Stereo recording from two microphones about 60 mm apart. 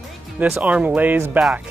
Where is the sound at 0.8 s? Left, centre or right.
Right.